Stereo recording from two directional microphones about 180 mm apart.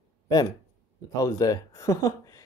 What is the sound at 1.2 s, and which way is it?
Speech, 20° left (ahead or behind).